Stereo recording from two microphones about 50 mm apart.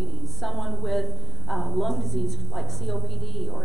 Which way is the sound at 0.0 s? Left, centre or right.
Centre.